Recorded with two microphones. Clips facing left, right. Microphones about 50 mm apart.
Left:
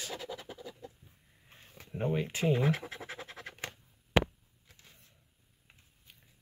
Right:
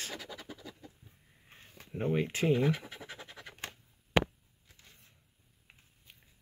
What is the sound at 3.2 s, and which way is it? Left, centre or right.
Scratch, left.